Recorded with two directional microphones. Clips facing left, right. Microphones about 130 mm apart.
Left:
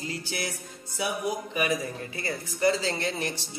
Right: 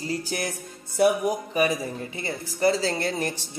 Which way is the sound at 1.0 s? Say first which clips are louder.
Right 11 dB; 55° right (ahead or behind).